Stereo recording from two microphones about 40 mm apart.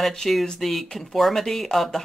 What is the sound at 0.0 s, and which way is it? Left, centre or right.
Speech, centre.